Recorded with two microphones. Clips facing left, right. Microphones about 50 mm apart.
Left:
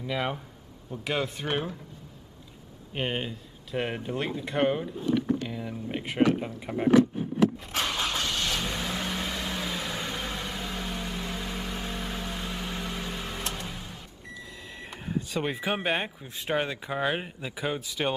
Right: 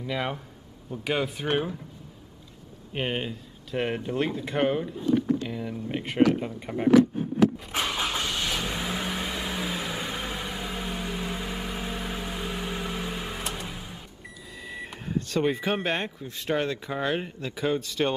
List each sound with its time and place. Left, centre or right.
0.0 s speech: centre
2.9 s speech: centre
7.7 s vehicle: centre
14.7 s speech: centre